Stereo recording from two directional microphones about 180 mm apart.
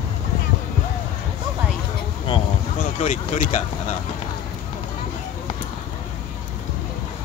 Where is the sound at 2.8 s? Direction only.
45° left (ahead or behind).